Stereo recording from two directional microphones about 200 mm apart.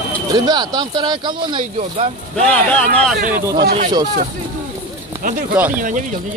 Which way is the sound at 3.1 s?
40° right (ahead or behind).